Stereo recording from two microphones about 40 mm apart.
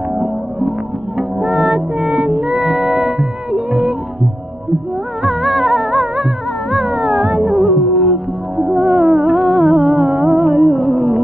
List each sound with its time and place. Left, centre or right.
1.1 s music: right
2.6 s music: centre
5.2 s music: centre